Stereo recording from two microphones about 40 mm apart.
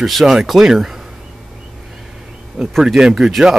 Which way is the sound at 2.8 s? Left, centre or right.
Centre.